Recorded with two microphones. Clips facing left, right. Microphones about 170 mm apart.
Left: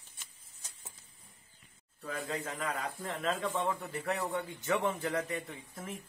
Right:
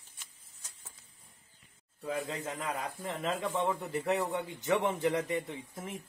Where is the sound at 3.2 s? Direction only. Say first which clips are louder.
Right 1 dB; 20° right (ahead or behind).